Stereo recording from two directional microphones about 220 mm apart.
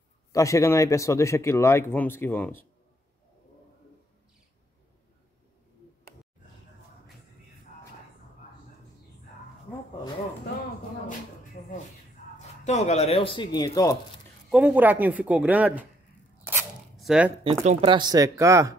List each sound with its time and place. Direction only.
0.3 s speech: 15° left (ahead or behind)
12.4 s speech: 30° left (ahead or behind)
14.5 s speech: 5° right (ahead or behind)
16.4 s a sound: 5° right (ahead or behind)
17.4 s speech: 25° right (ahead or behind)